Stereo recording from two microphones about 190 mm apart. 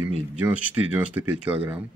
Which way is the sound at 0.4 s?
5° right (ahead or behind).